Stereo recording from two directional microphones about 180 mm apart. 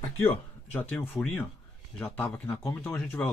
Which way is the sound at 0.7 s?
5° left (ahead or behind).